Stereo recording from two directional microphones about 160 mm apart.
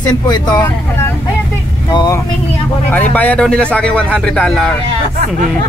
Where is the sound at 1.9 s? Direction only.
25° left (ahead or behind).